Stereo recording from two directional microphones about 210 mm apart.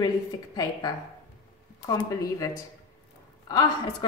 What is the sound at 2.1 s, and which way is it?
Speech, 15° left (ahead or behind).